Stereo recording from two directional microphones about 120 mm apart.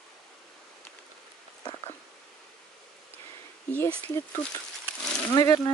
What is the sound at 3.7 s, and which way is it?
Speech, 15° left (ahead or behind).